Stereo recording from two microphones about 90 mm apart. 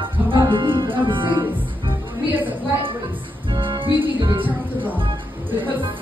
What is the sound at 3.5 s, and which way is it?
Music, 65° right (ahead or behind).